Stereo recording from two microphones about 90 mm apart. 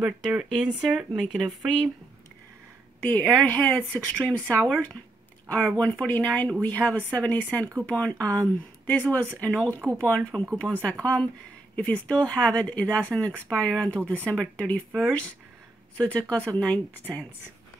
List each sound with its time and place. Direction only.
0.0 s speech: 5° right (ahead or behind)
3.0 s speech: 20° left (ahead or behind)